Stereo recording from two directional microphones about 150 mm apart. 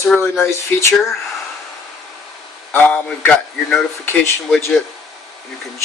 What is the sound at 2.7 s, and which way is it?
Speech, 10° left (ahead or behind).